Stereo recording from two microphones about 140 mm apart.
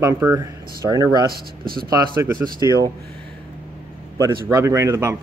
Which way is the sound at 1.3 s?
90° right.